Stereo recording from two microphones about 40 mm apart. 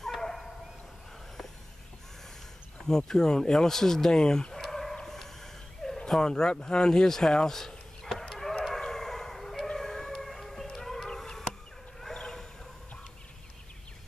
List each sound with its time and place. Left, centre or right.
0.0 s dog: centre
3.1 s speech: centre
4.6 s dog: centre
6.0 s speech: centre
8.2 s chicken: centre
8.6 s a sound: centre
9.8 s howl: centre
11.1 s chop: centre
12.0 s a sound: centre